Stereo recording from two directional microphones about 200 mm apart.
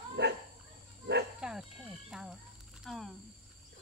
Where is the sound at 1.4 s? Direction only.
5° right (ahead or behind).